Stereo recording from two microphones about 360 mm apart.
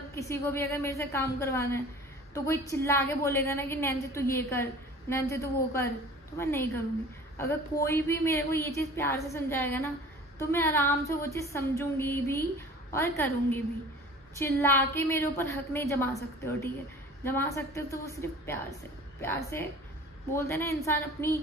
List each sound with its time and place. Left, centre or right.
0.1 s a woman's voice: centre